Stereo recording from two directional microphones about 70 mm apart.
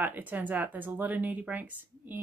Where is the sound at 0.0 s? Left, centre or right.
Right.